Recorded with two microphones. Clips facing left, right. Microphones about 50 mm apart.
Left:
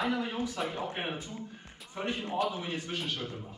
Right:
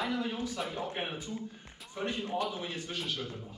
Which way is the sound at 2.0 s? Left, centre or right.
Centre.